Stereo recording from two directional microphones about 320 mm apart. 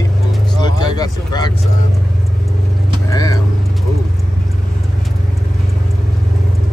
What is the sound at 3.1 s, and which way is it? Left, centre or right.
Vehicle, centre.